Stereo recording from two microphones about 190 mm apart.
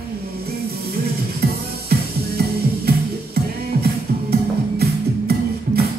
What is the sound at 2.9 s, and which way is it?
Music, 55° right (ahead or behind).